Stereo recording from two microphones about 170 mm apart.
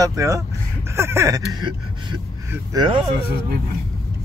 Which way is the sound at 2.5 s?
20° right (ahead or behind).